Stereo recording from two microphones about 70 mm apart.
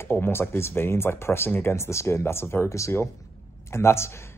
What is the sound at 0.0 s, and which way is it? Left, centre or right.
Speech, left.